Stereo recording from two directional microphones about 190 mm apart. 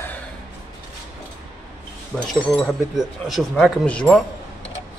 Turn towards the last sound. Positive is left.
turn(degrees=5)  # may be behind; listen again after turning